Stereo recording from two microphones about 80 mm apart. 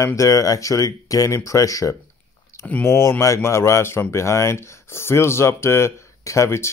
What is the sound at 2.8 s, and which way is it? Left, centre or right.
Speech, left.